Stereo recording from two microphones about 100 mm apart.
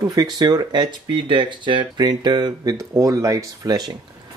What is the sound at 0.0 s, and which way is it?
Speech, 40° right (ahead or behind).